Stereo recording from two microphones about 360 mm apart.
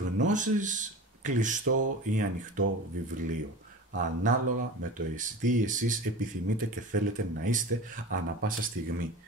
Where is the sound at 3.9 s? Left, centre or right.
Right.